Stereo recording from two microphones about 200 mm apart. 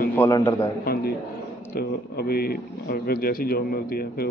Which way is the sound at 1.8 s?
50° left (ahead or behind).